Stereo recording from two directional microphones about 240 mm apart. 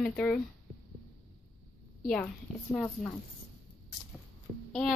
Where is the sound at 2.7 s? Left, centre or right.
Centre.